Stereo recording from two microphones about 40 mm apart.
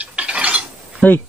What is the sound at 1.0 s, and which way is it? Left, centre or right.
Speech, left.